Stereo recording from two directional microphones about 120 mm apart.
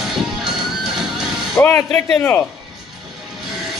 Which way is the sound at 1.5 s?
20° left (ahead or behind).